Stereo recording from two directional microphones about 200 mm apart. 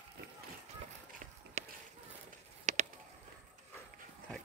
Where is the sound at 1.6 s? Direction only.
40° right (ahead or behind).